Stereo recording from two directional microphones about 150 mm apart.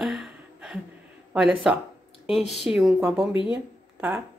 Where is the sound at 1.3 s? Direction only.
5° right (ahead or behind).